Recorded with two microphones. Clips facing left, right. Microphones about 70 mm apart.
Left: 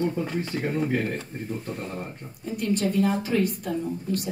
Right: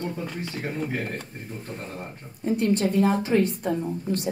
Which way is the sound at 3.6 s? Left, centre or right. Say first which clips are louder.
Right 2 dB; right.